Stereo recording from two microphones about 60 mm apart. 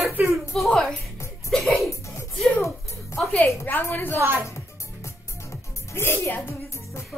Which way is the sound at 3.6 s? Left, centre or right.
Left.